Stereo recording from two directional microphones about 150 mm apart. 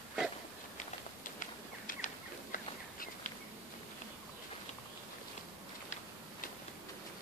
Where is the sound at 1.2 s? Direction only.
60° left (ahead or behind).